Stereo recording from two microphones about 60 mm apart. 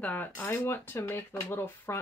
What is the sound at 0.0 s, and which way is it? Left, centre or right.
Speech, left.